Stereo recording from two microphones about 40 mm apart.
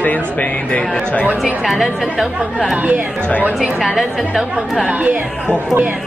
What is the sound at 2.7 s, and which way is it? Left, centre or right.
Speech, right.